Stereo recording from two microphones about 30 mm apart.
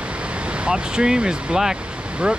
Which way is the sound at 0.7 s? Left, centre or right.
Right.